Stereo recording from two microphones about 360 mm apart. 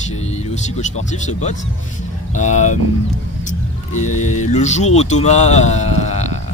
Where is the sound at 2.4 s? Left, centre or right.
Centre.